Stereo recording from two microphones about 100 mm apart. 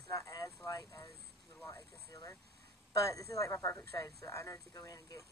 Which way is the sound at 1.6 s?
25° left (ahead or behind).